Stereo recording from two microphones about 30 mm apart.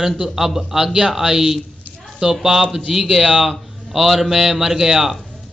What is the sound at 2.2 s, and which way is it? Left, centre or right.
Speech, right.